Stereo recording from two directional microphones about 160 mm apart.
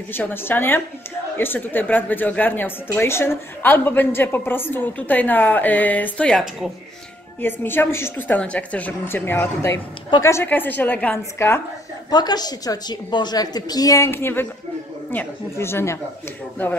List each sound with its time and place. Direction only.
0.1 s speech: 15° left (ahead or behind)
7.4 s speech: 15° left (ahead or behind)
12.1 s a woman's voice: 25° left (ahead or behind)